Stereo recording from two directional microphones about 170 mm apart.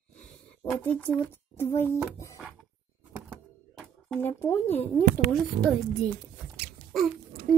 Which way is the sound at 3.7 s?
Centre (ahead or behind).